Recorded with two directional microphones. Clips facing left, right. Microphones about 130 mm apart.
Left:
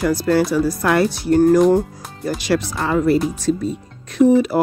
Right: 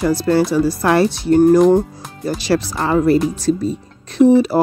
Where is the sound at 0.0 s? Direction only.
25° right (ahead or behind).